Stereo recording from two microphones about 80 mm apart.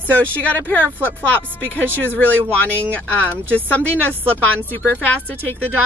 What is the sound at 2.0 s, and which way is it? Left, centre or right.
Speech, left.